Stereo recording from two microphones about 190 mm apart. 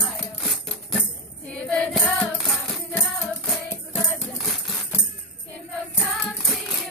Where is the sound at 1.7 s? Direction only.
Centre (ahead or behind).